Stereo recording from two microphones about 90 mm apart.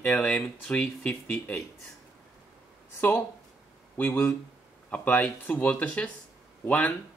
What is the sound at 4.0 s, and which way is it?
Speech, 25° left (ahead or behind).